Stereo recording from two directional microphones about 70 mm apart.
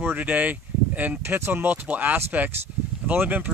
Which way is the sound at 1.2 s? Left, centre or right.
Right.